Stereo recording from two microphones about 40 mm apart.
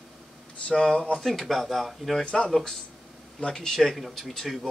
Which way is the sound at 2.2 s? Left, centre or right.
Left.